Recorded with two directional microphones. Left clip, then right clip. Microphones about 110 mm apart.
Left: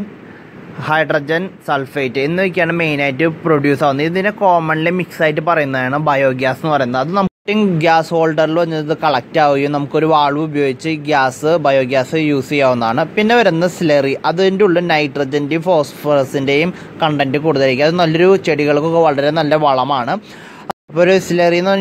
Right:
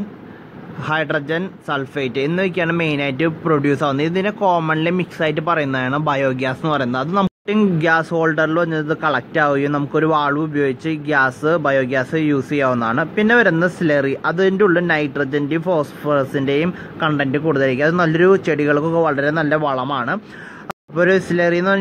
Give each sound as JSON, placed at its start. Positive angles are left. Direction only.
{"t": 0.8, "sound": "a man's voice", "side_deg": 25}
{"t": 19.1, "sound": "a man's voice", "side_deg": 40}